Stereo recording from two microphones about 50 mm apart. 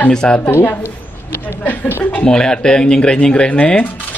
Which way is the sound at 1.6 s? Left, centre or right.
Left.